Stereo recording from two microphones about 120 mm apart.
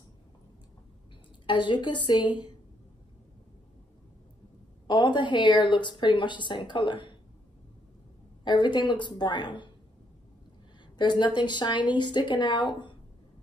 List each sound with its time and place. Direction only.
1.4 s speech: 40° left (ahead or behind)
4.8 s speech: 40° left (ahead or behind)
8.5 s speech: 40° left (ahead or behind)
11.0 s speech: 40° left (ahead or behind)